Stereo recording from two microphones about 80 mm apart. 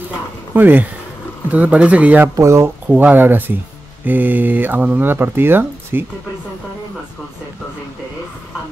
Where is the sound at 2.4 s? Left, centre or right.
Right.